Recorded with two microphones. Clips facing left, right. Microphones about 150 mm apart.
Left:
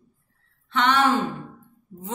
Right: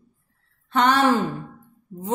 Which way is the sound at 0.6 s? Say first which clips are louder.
Right 3 dB; 40° right (ahead or behind).